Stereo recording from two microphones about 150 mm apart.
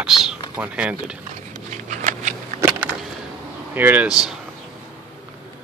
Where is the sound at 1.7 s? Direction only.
55° right (ahead or behind).